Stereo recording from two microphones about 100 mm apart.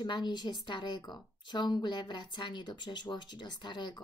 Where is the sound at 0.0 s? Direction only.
45° left (ahead or behind).